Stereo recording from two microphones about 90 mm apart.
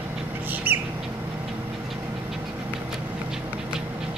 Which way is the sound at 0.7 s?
20° right (ahead or behind).